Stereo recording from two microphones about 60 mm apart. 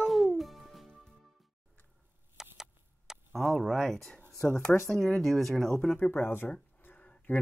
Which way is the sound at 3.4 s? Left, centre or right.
Centre.